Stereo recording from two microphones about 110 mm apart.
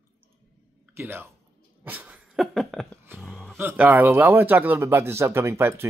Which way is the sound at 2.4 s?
Centre (ahead or behind).